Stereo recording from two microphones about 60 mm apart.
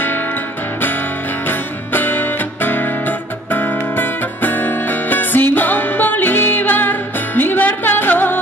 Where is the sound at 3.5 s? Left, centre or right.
Left.